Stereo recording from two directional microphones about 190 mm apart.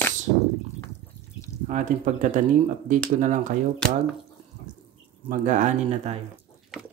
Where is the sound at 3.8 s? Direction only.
5° left (ahead or behind).